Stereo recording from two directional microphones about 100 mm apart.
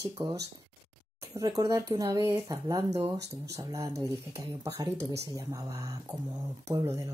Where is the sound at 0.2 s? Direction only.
50° right (ahead or behind).